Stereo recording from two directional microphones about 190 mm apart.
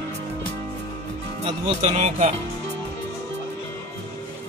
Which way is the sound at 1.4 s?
35° right (ahead or behind).